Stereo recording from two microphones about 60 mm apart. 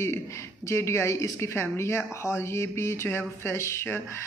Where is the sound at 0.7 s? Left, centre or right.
Left.